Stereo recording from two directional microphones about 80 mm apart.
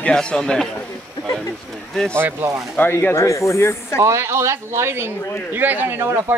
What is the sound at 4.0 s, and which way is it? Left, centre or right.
Speech, right.